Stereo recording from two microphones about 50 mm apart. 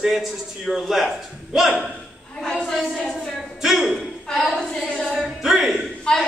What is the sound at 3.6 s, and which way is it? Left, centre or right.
Speech, centre.